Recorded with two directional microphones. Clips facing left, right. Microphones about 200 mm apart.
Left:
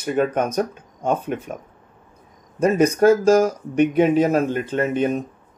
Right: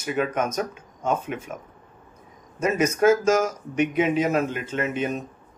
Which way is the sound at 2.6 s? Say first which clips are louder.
Left 5 dB; 35° left (ahead or behind).